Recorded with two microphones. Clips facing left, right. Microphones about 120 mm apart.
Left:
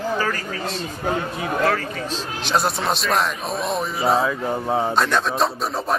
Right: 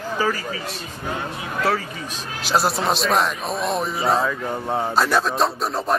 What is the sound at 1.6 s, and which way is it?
A man's voice, 10° right (ahead or behind).